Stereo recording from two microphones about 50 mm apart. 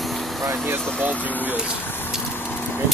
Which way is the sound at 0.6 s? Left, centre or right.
Right.